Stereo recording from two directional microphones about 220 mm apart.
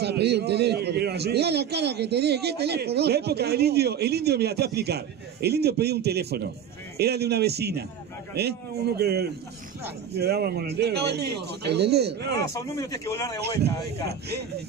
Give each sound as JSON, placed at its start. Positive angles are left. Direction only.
{"t": 0.0, "sound": "a man's voice", "side_deg": -50}
{"t": 12.4, "sound": "speech", "side_deg": 15}
{"t": 13.4, "sound": "a man's voice", "side_deg": -50}